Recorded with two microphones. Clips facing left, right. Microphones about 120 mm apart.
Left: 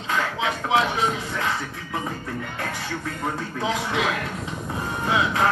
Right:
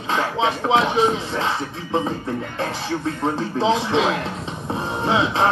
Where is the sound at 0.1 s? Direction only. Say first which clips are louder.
Right 4 dB; 25° right (ahead or behind).